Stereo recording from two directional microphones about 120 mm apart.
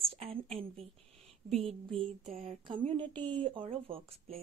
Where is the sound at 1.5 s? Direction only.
55° right (ahead or behind).